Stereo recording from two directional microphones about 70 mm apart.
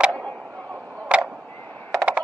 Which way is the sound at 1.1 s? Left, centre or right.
Centre.